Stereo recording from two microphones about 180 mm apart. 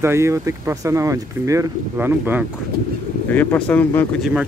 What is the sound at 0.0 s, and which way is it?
Speech, 15° right (ahead or behind).